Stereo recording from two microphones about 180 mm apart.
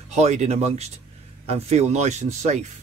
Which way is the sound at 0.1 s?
35° right (ahead or behind).